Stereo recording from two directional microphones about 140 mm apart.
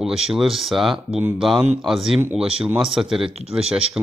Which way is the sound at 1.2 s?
15° right (ahead or behind).